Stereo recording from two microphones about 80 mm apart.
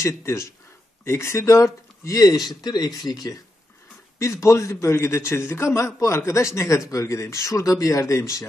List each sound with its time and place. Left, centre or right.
0.0 s a man's voice: left
4.2 s a man's voice: left